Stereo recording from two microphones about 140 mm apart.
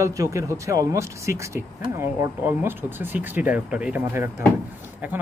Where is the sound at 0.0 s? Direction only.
20° right (ahead or behind).